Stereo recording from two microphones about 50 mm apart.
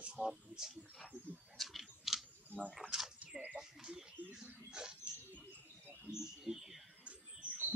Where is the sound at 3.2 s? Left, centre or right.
Right.